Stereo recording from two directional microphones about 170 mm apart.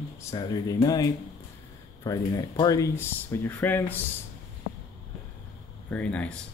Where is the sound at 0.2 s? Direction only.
20° left (ahead or behind).